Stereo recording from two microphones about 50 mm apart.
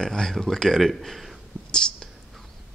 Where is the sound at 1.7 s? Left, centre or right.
Centre.